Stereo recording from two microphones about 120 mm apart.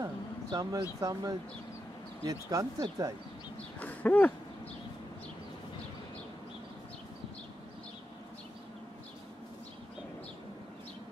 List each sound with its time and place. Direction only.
0.0 s speech: 30° right (ahead or behind)
2.5 s speech: 30° right (ahead or behind)
3.8 s a sound: 15° left (ahead or behind)